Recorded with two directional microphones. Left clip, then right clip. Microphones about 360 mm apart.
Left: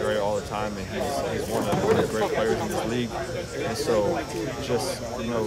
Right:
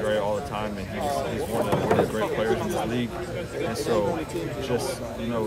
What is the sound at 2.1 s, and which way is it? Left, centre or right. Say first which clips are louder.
Speech: left 1 dB; centre.